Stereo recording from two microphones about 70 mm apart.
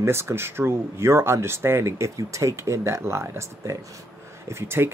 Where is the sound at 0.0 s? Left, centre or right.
Right.